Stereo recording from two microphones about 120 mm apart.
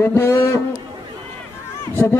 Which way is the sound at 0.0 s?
20° left (ahead or behind).